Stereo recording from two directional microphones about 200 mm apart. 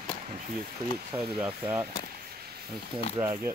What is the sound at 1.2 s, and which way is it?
Speech, 25° right (ahead or behind).